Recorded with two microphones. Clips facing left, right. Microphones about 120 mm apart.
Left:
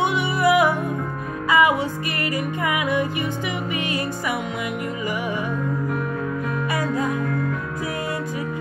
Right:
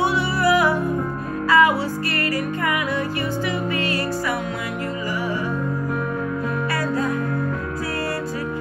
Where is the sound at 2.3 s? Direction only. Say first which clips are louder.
Even; 20° left (ahead or behind).